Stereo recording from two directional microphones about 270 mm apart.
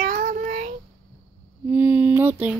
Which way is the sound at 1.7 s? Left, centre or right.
Centre.